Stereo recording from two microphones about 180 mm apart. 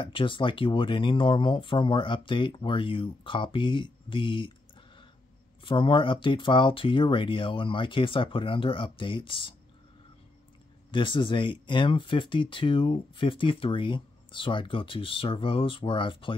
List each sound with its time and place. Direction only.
0.0 s speech: 30° left (ahead or behind)
5.6 s speech: 30° left (ahead or behind)
10.9 s speech: 25° left (ahead or behind)